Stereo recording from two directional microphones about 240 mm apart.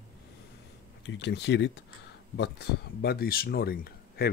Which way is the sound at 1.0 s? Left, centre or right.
Left.